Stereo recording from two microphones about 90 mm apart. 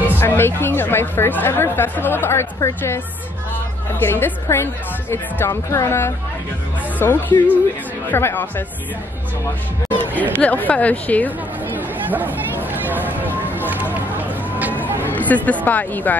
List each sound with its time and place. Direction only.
0.1 s a woman's voice: 25° left (ahead or behind)
4.0 s a woman's voice: 25° left (ahead or behind)
10.3 s a woman's voice: 20° left (ahead or behind)
11.2 s chatter: 20° right (ahead or behind)
15.0 s speech: 20° left (ahead or behind)